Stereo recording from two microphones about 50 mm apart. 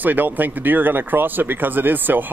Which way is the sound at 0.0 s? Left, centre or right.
Right.